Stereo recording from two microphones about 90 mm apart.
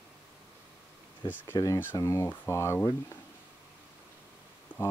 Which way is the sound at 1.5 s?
40° left (ahead or behind).